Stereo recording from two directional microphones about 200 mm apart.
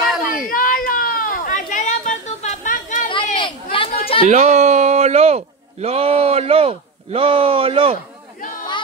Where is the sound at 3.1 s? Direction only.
25° left (ahead or behind).